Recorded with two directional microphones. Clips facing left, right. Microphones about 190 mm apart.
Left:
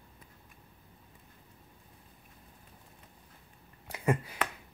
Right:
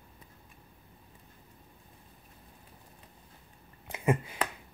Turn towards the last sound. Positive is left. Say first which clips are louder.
# right 1 dB
turn(degrees=-25)  # may be behind; listen again after turning